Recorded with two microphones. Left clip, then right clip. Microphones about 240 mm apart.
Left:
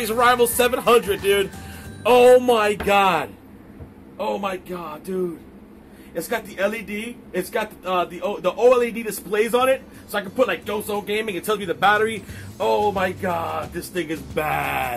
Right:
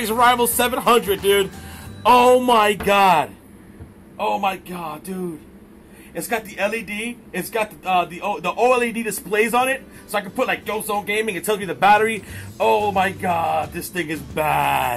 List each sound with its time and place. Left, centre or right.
0.0 s a man's voice: right
6.1 s a man's voice: right